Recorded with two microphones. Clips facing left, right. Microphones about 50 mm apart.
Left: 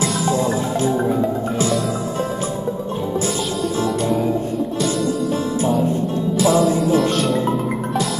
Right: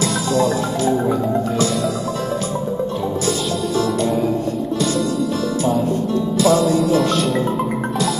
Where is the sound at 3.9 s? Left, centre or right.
Centre.